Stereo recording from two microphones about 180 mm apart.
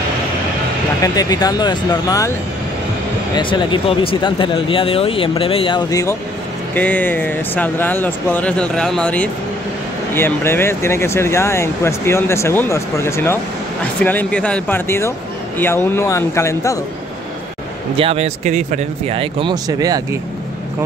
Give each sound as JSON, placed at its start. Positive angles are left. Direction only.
{"t": 1.0, "sound": "speech", "side_deg": 20}
{"t": 3.3, "sound": "speech", "side_deg": 25}
{"t": 17.9, "sound": "speech", "side_deg": -35}